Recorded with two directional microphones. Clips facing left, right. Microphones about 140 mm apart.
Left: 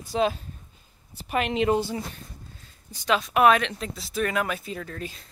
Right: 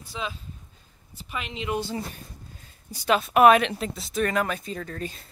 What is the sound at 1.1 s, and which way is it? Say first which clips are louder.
Speech: left 10 dB; 60° left (ahead or behind).